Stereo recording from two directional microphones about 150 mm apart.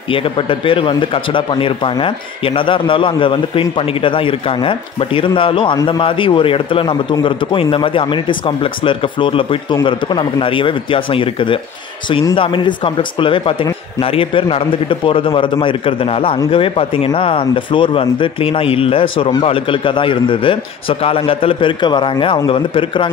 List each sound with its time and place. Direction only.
0.1 s speech: 35° left (ahead or behind)